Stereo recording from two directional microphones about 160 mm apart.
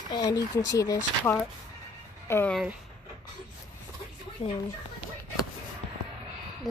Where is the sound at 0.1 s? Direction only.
25° left (ahead or behind).